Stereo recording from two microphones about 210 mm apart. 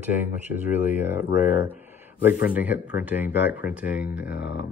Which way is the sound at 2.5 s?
10° right (ahead or behind).